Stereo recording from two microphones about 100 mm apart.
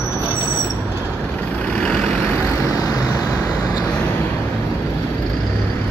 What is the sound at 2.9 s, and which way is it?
Vehicle, 35° left (ahead or behind).